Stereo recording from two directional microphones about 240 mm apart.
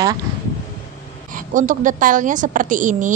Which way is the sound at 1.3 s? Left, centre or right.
Right.